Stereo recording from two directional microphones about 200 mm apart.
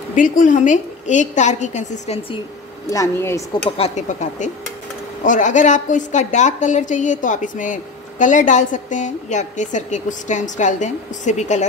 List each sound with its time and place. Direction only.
0.1 s a woman's voice: 40° left (ahead or behind)
2.9 s speech: 15° left (ahead or behind)
3.7 s a woman's voice: 30° left (ahead or behind)